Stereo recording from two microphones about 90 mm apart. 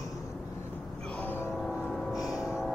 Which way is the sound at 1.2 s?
20° left (ahead or behind).